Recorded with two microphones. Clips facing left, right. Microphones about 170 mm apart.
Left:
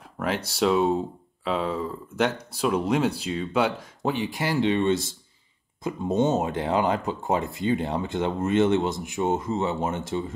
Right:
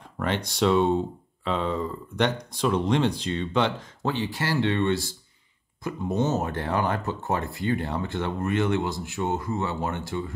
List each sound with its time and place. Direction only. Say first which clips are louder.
0.2 s speech: even; 5° left (ahead or behind); by 10.3 s 20° left (ahead or behind)